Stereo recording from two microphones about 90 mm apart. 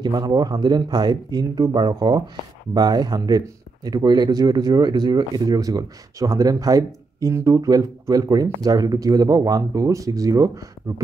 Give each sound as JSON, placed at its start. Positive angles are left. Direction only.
{"t": 0.0, "sound": "speech", "side_deg": -55}
{"t": 10.9, "sound": "speech", "side_deg": -65}